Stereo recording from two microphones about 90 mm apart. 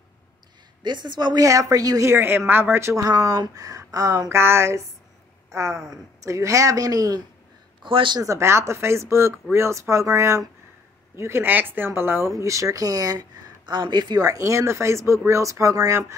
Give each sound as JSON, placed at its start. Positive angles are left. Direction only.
{"t": 0.8, "sound": "a woman's voice", "side_deg": -55}
{"t": 1.4, "sound": "speech", "side_deg": -40}
{"t": 3.1, "sound": "speech", "side_deg": -45}
{"t": 7.8, "sound": "a woman's voice", "side_deg": -65}
{"t": 8.2, "sound": "speech", "side_deg": -35}